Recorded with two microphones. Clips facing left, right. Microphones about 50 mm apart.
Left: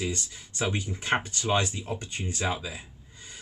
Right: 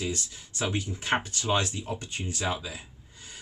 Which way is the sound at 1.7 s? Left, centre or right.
Left.